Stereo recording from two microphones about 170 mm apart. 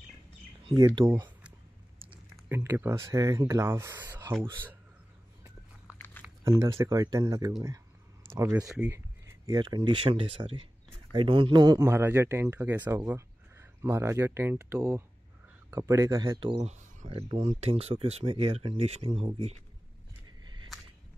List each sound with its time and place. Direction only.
1.0 s speech: 25° right (ahead or behind)
2.5 s speech: 15° right (ahead or behind)
5.9 s a sound: 10° left (ahead or behind)
6.8 s speech: 20° right (ahead or behind)
9.5 s speech: 25° right (ahead or behind)
17.1 s speech: 35° right (ahead or behind)